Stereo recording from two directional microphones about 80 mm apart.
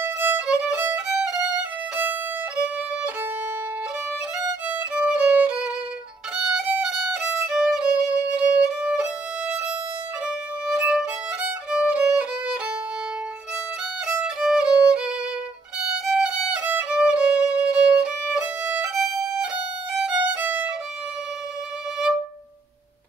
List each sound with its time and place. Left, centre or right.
0.5 s violin: centre
4.6 s violin: centre
10.2 s violin: centre
14.0 s violin: centre